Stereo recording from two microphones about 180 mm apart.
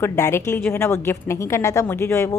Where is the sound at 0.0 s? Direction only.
15° left (ahead or behind).